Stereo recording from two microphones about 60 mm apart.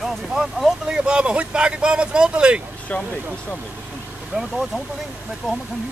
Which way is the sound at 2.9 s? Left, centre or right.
Left.